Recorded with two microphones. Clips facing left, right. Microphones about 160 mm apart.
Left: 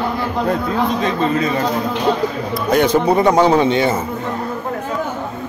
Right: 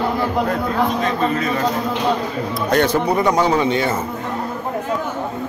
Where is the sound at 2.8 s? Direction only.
25° left (ahead or behind).